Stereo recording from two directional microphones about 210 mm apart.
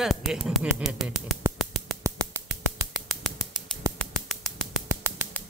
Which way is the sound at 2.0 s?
10° right (ahead or behind).